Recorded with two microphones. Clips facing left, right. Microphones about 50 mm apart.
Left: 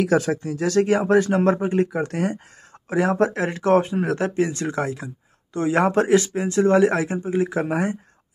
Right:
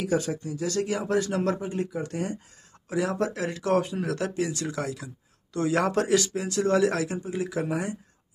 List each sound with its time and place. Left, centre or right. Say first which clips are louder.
0.0 s a man's voice: left 7 dB; left
2.9 s speech: left 7 dB; left